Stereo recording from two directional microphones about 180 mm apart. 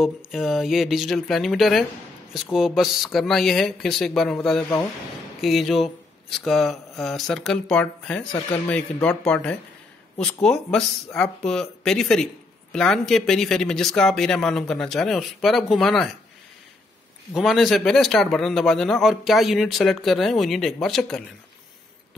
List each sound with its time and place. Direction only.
0.0 s a man's voice: centre (ahead or behind)
8.3 s speech: 20° left (ahead or behind)
8.6 s a man's voice: 5° left (ahead or behind)
17.3 s a man's voice: centre (ahead or behind)